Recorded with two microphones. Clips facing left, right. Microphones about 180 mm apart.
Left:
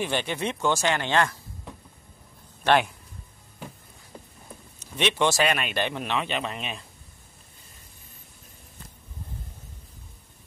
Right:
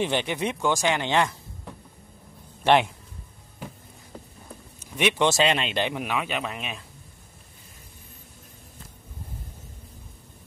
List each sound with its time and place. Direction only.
0.0 s a man's voice: 15° right (ahead or behind)
2.6 s a man's voice: 20° right (ahead or behind)
4.7 s a man's voice: 15° right (ahead or behind)